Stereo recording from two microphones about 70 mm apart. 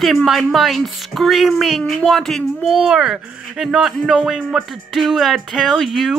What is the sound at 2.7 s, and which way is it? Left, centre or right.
Speech, centre.